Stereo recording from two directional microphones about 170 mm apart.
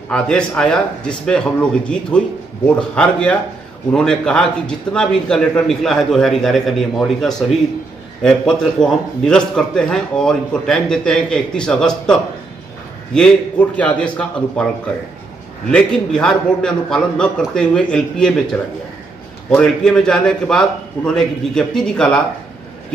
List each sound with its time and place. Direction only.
0.1 s a man's voice: 5° left (ahead or behind)
15.7 s a man's voice: 5° left (ahead or behind)